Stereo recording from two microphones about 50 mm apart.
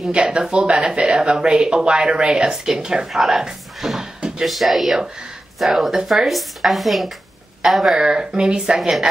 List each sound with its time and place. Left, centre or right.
0.1 s speech: centre